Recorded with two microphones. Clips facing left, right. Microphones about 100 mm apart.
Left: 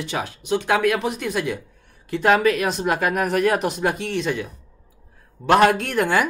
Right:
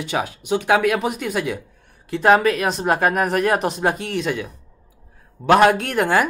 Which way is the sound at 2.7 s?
40° right (ahead or behind).